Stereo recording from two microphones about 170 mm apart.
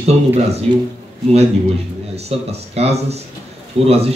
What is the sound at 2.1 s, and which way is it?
A man's voice, 40° right (ahead or behind).